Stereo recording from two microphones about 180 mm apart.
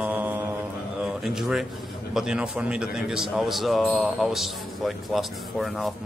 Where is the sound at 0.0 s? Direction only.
10° right (ahead or behind).